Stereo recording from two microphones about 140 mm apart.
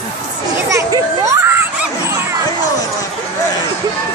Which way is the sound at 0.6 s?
20° right (ahead or behind).